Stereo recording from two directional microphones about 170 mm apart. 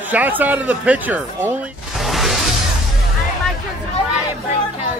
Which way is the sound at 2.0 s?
Centre (ahead or behind).